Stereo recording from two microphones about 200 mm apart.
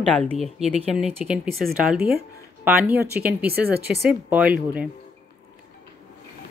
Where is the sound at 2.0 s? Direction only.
50° right (ahead or behind).